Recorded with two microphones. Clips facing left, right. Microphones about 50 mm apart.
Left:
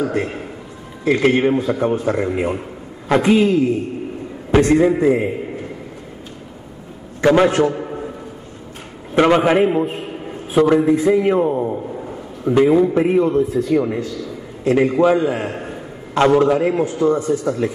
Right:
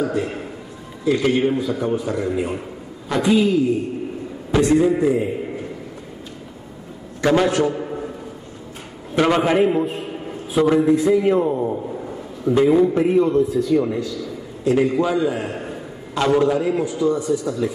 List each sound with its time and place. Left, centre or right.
1.0 s a man's voice: left
7.2 s a man's voice: left
7.7 s a sound: centre
9.1 s a man's voice: centre
10.5 s a man's voice: left
10.8 s a man's voice: left
11.6 s a sound: centre
12.4 s a man's voice: left
14.9 s a man's voice: left
15.6 s a sound: left
16.3 s a man's voice: left